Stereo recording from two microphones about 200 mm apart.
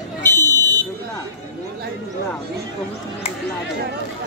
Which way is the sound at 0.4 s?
20° right (ahead or behind).